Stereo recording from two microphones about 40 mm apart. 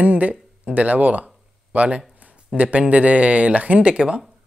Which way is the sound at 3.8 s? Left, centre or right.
Right.